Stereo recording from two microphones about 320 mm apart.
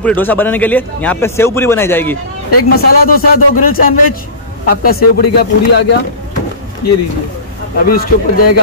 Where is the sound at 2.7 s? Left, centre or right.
Left.